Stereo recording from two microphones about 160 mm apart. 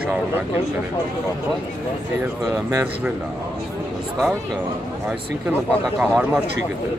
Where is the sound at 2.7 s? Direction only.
10° right (ahead or behind).